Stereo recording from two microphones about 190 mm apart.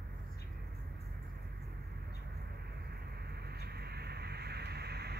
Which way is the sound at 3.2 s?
55° right (ahead or behind).